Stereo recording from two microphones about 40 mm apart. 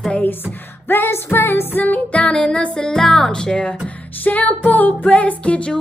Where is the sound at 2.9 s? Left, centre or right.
Centre.